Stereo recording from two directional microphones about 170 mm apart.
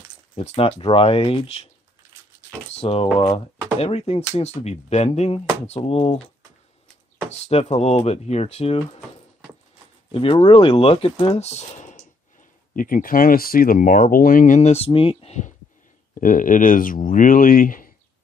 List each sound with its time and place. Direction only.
0.4 s speech: 35° left (ahead or behind)
2.7 s speech: 35° left (ahead or behind)
10.1 s speech: 35° left (ahead or behind)
16.2 s speech: 50° left (ahead or behind)